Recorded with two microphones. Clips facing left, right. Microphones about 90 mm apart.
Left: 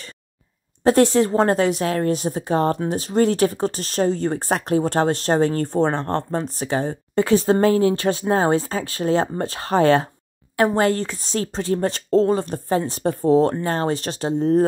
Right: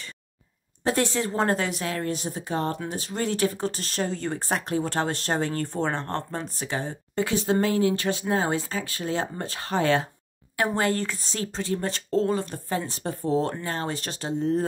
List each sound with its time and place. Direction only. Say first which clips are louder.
0.8 s speech: left 9 dB; 40° left (ahead or behind)
4.6 s speech: left 7 dB; 45° left (ahead or behind)